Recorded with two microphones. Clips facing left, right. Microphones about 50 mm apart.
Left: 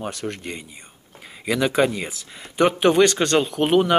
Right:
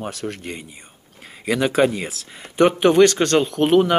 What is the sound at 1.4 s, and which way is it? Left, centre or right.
Speech, centre.